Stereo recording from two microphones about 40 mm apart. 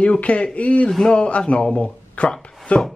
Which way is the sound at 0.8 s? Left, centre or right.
Centre.